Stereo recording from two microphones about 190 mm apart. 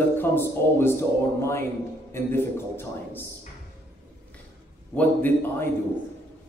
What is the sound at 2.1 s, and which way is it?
A man's voice, 10° left (ahead or behind).